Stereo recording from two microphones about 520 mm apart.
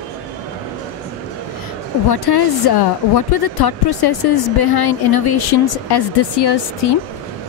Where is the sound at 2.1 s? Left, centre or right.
Left.